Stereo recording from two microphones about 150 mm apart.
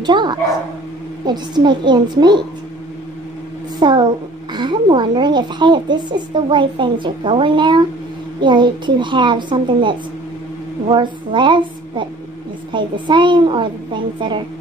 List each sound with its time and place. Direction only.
0.0 s a woman's voice: 30° right (ahead or behind)
3.8 s a woman's voice: 30° right (ahead or behind)